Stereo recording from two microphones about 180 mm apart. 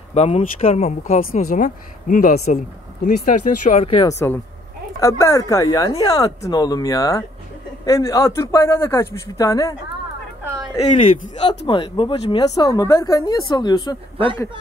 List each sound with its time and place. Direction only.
0.1 s speech: 40° left (ahead or behind)
1.2 s speech: 50° left (ahead or behind); by 4.0 s 35° left (ahead or behind)
4.0 s speech: 15° left (ahead or behind)
11.0 s speech: 30° left (ahead or behind)